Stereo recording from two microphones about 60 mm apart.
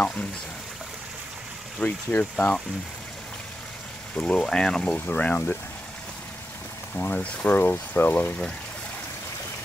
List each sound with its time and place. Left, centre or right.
0.0 s speech: left
1.8 s speech: left
4.1 s speech: centre
4.9 s speech: left
7.0 s speech: left